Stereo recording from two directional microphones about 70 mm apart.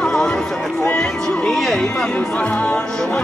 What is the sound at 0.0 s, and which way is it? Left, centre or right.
Run, centre.